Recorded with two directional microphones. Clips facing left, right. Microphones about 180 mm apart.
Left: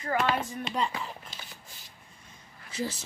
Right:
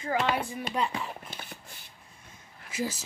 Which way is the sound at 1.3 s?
55° right (ahead or behind).